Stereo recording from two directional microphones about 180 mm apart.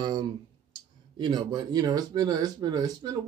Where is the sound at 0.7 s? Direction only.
25° right (ahead or behind).